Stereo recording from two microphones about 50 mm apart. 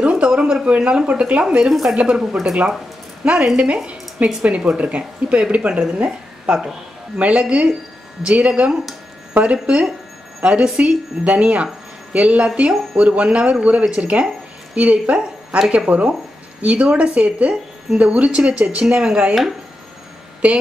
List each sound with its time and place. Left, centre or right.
0.2 s a sound: centre
0.7 s speech: centre
1.0 s speech: right
1.7 s speech: centre
3.5 s a woman's voice: right